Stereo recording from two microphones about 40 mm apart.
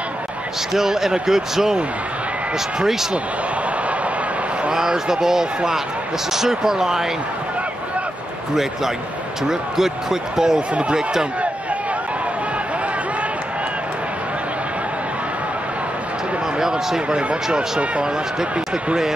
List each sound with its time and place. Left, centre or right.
0.7 s speech: centre
2.8 s speech: centre
4.7 s speech: centre
9.5 s speech: centre
16.5 s a sound: centre
17.1 s speech: right